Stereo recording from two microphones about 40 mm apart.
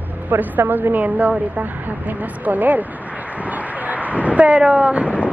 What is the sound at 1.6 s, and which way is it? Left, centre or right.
Speech, right.